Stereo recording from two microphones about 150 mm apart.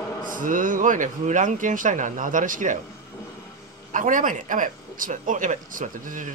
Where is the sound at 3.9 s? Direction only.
60° right (ahead or behind).